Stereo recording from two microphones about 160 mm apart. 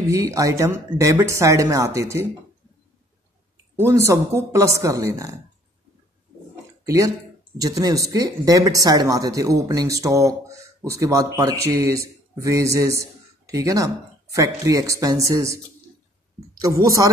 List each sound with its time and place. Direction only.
0.3 s speech: 20° right (ahead or behind)
3.7 s speech: 20° right (ahead or behind)
7.5 s a woman's voice: 25° right (ahead or behind)